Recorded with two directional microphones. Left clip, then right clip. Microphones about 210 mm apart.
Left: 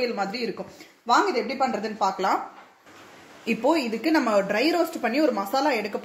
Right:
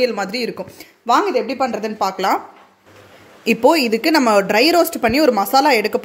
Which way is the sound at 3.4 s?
50° right (ahead or behind).